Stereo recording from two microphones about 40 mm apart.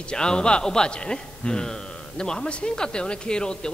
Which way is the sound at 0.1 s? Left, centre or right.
Left.